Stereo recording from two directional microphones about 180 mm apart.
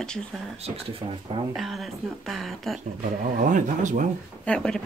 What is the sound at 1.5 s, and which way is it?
Speech, centre (ahead or behind).